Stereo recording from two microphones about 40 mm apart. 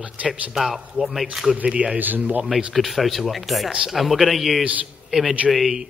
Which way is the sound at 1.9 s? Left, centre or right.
Right.